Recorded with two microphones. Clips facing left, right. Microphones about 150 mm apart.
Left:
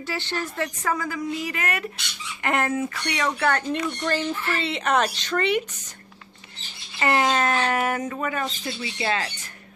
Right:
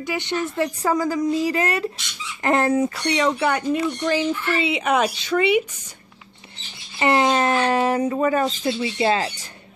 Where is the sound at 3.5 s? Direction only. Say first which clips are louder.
Right 3 dB; 10° right (ahead or behind).